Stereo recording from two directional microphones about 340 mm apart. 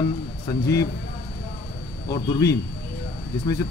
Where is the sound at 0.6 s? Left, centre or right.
Left.